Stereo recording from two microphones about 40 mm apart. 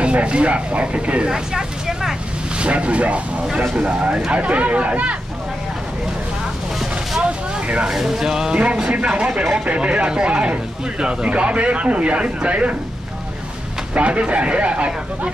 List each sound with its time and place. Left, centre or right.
0.0 s speech: right
1.3 s vehicle: centre
2.6 s speech: right
7.2 s speech: right
7.9 s speech: centre
8.8 s speech: right
13.9 s speech: right